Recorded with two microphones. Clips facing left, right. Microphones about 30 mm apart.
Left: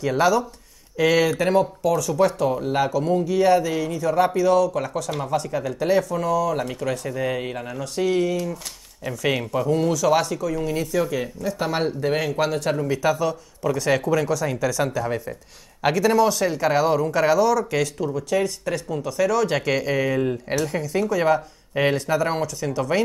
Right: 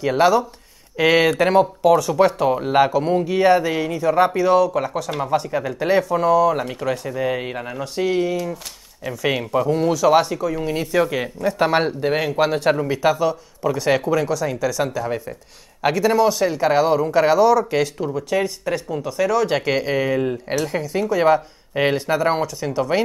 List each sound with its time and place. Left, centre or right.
0.0 s speech: right
6.5 s speech: centre
10.7 s speech: right
12.0 s speech: right